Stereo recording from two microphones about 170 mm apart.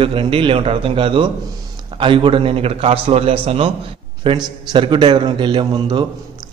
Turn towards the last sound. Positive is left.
turn(degrees=-25)  # may be behind; listen again after turning